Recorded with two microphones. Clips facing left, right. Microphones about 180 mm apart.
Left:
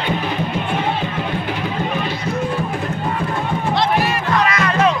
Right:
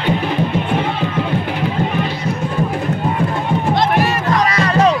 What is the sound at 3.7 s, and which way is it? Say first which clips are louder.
Music: right 1 dB; 40° right (ahead or behind).